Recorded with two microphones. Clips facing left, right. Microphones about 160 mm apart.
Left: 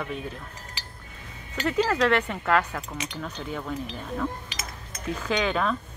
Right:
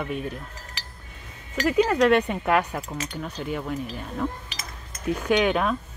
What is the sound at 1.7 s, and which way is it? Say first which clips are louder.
Speech: right 4 dB; 15° right (ahead or behind).